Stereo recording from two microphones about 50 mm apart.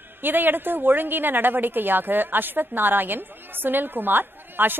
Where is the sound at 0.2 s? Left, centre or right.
Right.